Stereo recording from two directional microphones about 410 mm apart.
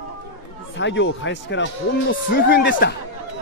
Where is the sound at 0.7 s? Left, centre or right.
Left.